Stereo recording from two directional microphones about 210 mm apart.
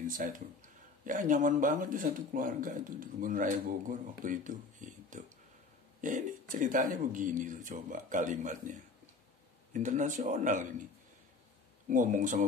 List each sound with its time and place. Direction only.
0.0 s speech: 40° right (ahead or behind)
11.9 s speech: 35° right (ahead or behind)